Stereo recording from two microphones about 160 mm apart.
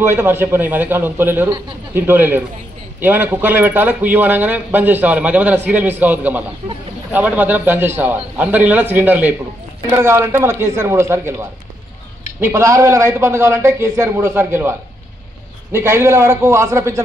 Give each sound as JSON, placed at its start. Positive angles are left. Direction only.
{"t": 0.0, "sound": "a man's voice", "side_deg": -15}